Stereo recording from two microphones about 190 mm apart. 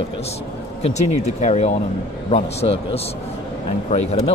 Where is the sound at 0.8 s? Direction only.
35° left (ahead or behind).